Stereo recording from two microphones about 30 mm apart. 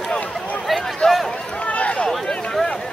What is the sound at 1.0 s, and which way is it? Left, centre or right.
Run, left.